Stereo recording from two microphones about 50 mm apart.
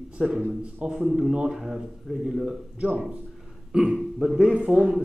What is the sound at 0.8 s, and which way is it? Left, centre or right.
Speech, right.